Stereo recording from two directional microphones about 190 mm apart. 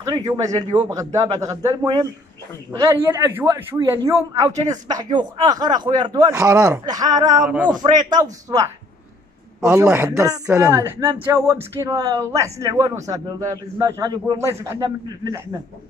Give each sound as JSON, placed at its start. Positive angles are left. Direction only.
{"t": 0.3, "sound": "speech", "side_deg": -20}
{"t": 7.4, "sound": "speech", "side_deg": -10}
{"t": 7.7, "sound": "a man's voice", "side_deg": -20}